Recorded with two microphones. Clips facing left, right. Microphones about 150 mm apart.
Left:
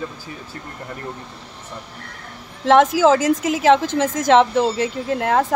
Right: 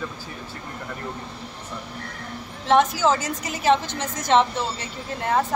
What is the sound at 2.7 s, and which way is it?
A woman's voice, 90° left.